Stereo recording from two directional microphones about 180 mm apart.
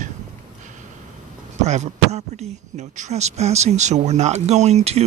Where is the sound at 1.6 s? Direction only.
40° right (ahead or behind).